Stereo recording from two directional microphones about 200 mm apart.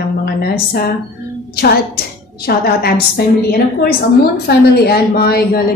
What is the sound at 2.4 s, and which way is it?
Speech, 50° left (ahead or behind).